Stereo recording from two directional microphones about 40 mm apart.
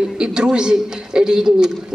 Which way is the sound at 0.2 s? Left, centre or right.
Centre.